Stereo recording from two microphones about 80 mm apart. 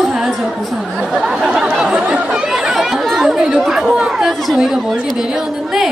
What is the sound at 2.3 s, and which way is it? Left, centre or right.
Chatter, centre.